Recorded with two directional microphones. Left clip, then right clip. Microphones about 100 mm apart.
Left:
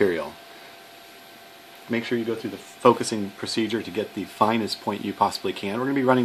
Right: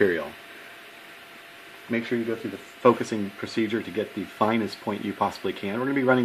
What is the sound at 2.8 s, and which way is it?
Speech, 15° left (ahead or behind).